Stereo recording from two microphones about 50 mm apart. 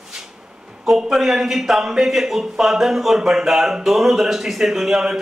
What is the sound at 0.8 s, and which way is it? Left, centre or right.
A man's voice, centre.